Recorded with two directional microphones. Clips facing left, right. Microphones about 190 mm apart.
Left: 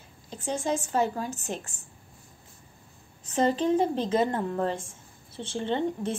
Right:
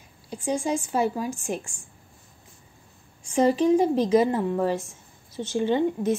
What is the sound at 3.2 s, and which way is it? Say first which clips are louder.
Speech: right 4 dB; 10° right (ahead or behind).